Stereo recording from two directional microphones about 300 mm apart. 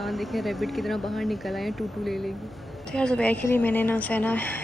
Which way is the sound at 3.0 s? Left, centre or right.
Centre.